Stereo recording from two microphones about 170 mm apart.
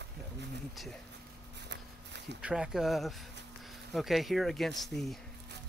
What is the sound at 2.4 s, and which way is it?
Speech, 5° right (ahead or behind).